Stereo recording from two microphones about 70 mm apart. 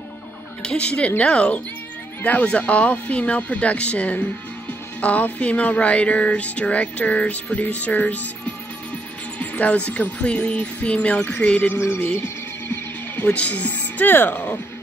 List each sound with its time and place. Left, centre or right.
0.6 s speech: centre
9.4 s speech: left
13.3 s speech: centre